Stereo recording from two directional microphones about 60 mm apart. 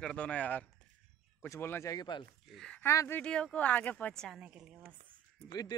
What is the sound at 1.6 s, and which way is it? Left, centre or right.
Speech, left.